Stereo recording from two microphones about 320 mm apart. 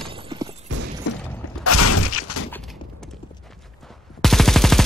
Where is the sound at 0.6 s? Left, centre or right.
Right.